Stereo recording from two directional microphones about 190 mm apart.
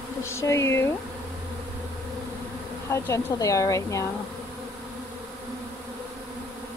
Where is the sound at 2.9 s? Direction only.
15° left (ahead or behind).